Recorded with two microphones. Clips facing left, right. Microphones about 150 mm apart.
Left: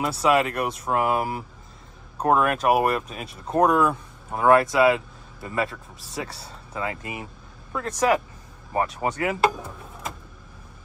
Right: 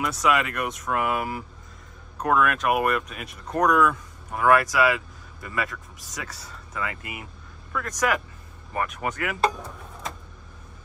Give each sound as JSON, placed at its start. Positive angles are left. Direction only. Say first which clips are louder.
{"t": 0.0, "sound": "speech", "louder": "left 3 dB", "side_deg": 30}
{"t": 9.4, "sound": "speech", "louder": "left 2 dB", "side_deg": 5}